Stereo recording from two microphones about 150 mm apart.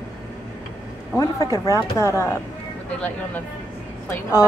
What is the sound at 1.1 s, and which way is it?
Speech, 25° left (ahead or behind).